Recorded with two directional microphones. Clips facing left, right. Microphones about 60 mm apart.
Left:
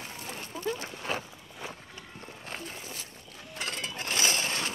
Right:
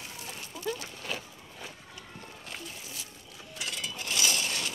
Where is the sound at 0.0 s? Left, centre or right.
Left.